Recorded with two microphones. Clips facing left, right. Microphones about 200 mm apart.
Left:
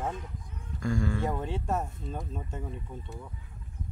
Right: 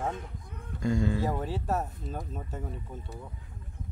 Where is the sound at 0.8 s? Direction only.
20° right (ahead or behind).